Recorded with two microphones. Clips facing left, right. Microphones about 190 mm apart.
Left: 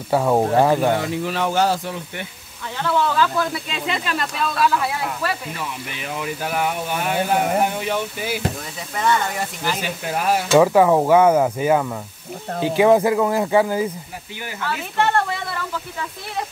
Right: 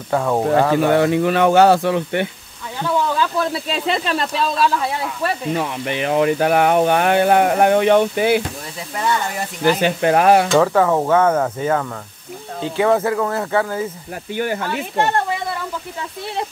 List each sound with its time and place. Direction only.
0.1 s speech: 10° left (ahead or behind)
0.9 s speech: 65° right (ahead or behind)
2.8 s a sound: 15° right (ahead or behind)
3.6 s speech: 35° right (ahead or behind)
5.6 s speech: 60° right (ahead or behind)
9.8 s speech: 65° right (ahead or behind)
10.5 s speech: 10° left (ahead or behind)
14.3 s speech: 55° right (ahead or behind)